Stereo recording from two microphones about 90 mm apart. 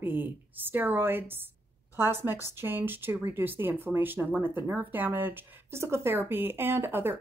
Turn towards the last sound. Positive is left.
turn(degrees=-25)  # may be behind; listen again after turning